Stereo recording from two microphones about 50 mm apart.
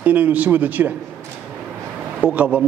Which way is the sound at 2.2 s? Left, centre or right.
Right.